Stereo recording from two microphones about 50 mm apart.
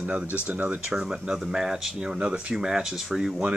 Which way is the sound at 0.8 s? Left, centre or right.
Centre.